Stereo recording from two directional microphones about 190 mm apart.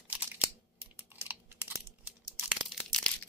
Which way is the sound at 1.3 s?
10° right (ahead or behind).